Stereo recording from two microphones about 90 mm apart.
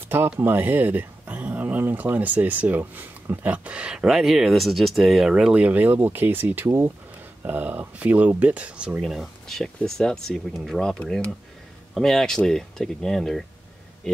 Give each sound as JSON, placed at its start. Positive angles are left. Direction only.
{"t": 0.4, "sound": "speech", "side_deg": -20}
{"t": 5.3, "sound": "speech", "side_deg": -15}
{"t": 9.0, "sound": "speech", "side_deg": 0}